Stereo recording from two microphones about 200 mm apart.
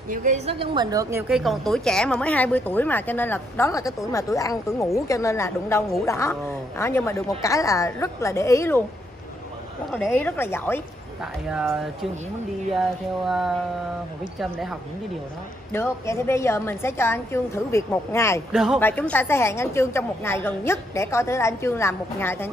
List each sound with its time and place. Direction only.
0.1 s a woman's voice: 35° right (ahead or behind); by 1.3 s 15° right (ahead or behind)
1.3 s a woman's voice: centre (ahead or behind)
9.8 s a woman's voice: 5° left (ahead or behind)
11.4 s speech: centre (ahead or behind)
13.3 s speech: centre (ahead or behind)
15.7 s a woman's voice: 10° left (ahead or behind)
18.5 s speech: centre (ahead or behind)
18.8 s a woman's voice: 10° left (ahead or behind)